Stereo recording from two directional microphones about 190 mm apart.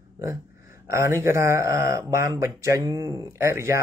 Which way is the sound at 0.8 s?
15° right (ahead or behind).